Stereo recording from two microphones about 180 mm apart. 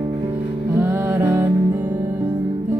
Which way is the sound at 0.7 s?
10° right (ahead or behind).